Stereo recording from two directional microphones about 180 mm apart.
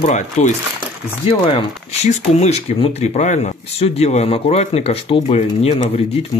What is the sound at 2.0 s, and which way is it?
Speech, 40° left (ahead or behind).